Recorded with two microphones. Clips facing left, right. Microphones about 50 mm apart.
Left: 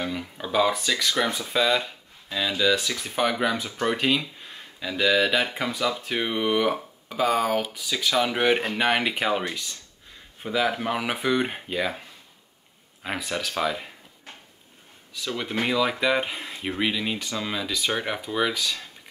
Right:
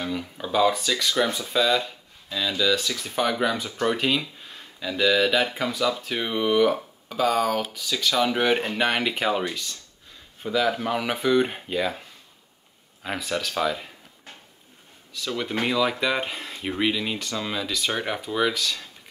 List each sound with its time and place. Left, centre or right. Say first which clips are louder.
0.0 s speech: right 1 dB; centre
13.0 s speech: right 1 dB; centre
15.1 s speech: right 1 dB; centre